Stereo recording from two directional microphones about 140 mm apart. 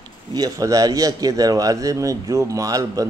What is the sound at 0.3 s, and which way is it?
Speech, 25° right (ahead or behind).